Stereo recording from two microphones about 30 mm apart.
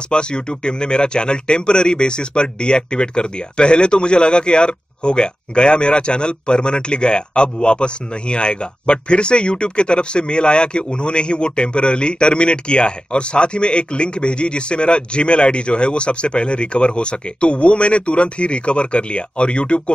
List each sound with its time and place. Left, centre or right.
0.1 s speech: left